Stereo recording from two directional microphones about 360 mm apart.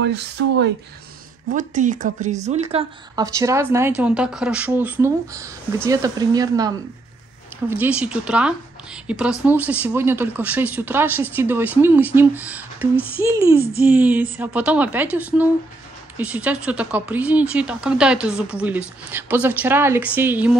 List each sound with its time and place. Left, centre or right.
0.0 s speech: right; by 6.7 s centre
7.7 s speech: centre